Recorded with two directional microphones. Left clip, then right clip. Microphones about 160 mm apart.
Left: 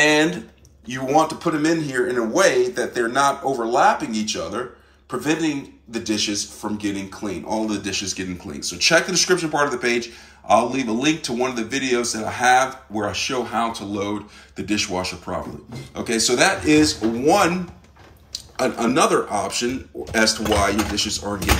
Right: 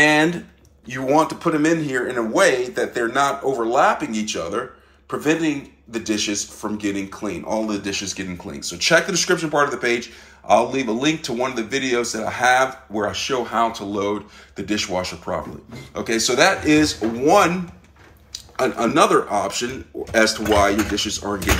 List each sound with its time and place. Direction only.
0.0 s a man's voice: centre (ahead or behind)